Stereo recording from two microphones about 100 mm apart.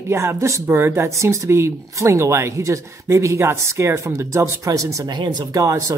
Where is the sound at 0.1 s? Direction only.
25° right (ahead or behind).